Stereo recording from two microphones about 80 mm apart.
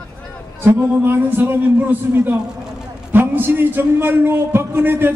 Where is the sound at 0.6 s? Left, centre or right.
Right.